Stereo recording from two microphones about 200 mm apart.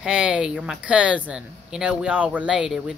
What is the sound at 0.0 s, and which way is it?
Speech, 5° right (ahead or behind).